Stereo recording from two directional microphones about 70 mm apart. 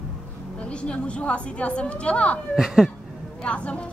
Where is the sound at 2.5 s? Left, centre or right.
Centre.